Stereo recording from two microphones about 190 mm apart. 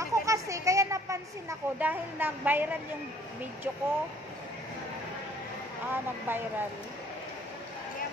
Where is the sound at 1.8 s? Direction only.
10° right (ahead or behind).